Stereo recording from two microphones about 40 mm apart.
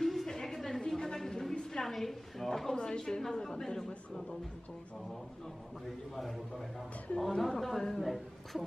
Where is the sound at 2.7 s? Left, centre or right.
Left.